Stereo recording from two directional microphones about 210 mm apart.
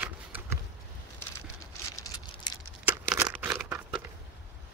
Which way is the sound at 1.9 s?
15° left (ahead or behind).